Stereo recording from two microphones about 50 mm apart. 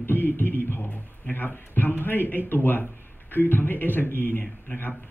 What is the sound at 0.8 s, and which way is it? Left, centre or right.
Speech, left.